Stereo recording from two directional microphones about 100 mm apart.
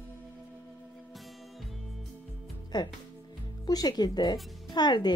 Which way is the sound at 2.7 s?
45° left (ahead or behind).